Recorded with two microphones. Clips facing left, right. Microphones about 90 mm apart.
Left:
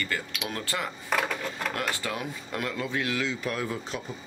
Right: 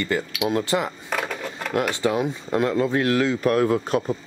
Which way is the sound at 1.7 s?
20° right (ahead or behind).